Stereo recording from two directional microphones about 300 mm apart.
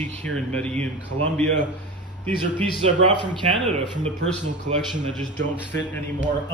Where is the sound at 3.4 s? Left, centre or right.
Centre.